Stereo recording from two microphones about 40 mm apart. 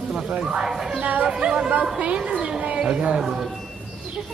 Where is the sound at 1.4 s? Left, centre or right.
Right.